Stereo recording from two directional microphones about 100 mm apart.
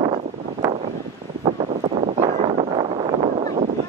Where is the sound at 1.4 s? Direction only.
90° right; by 3.6 s 65° right (ahead or behind).